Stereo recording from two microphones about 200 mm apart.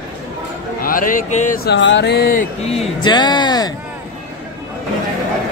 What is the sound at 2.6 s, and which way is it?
Speech, 25° left (ahead or behind).